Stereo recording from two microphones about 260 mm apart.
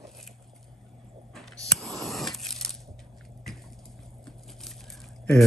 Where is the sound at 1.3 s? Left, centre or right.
Centre.